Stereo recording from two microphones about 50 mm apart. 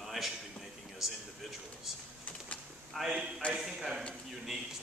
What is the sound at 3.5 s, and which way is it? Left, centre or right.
Speech, centre.